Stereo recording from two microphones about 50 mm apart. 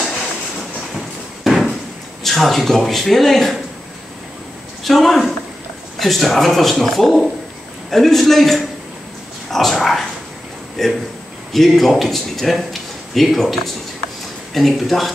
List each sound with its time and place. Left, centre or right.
1.4 s a sound: centre
2.2 s speech: centre
4.8 s speech: centre
9.5 s dog: centre
10.8 s speech: centre